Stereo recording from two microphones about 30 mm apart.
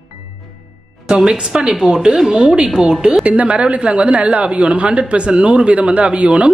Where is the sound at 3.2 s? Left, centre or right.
Right.